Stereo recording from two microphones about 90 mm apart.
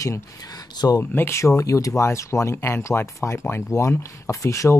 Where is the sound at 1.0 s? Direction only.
25° left (ahead or behind).